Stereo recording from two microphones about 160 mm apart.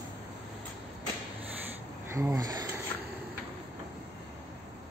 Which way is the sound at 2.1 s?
20° right (ahead or behind).